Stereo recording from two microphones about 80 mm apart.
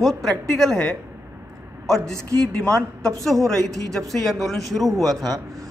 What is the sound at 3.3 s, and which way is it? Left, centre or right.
A man's voice, centre.